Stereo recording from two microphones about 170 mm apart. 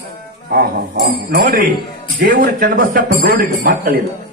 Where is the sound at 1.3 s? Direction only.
60° right (ahead or behind).